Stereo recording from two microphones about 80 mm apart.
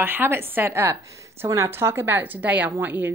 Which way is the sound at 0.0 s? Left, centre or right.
Right.